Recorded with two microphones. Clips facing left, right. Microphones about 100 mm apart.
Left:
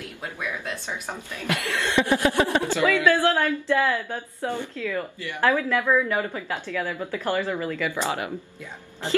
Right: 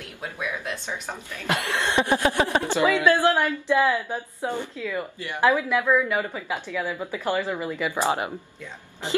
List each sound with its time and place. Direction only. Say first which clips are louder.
0.2 s speech: right 1 dB; 15° right (ahead or behind)
0.8 s a woman's voice: even; 15° left (ahead or behind)
1.5 s speech: right 1 dB; 20° right (ahead or behind)